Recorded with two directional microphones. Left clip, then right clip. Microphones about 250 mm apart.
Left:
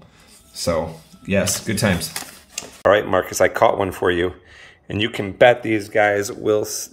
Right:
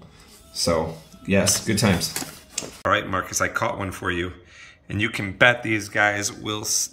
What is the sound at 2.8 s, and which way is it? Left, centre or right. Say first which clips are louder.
Speech: left 7 dB; centre.